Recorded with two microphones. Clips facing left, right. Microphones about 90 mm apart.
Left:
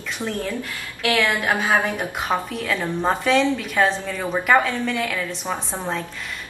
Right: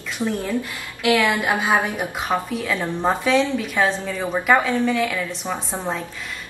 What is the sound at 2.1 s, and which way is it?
A woman's voice, centre (ahead or behind).